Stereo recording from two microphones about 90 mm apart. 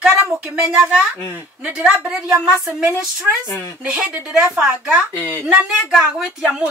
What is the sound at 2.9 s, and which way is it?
Speech, 30° left (ahead or behind).